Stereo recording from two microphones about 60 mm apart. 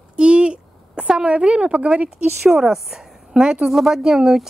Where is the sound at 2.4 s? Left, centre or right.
Centre.